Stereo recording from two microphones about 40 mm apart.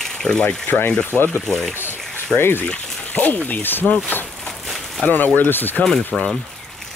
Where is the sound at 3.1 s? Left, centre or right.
Left.